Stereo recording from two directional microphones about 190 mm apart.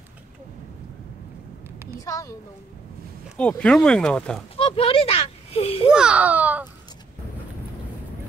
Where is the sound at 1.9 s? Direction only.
20° left (ahead or behind).